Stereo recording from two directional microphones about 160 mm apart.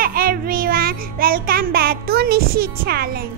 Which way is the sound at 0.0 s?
65° right (ahead or behind).